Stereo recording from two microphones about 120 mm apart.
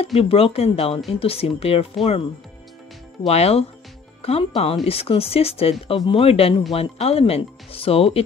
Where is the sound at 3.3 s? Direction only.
60° left (ahead or behind).